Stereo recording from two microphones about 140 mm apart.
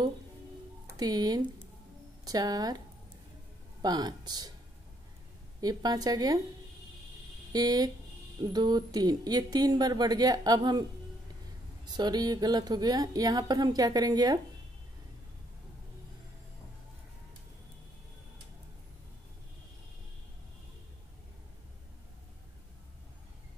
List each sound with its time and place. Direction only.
0.8 s speech: 25° right (ahead or behind)
3.8 s speech: 30° right (ahead or behind)
5.6 s speech: 30° right (ahead or behind)
7.5 s speech: 25° right (ahead or behind)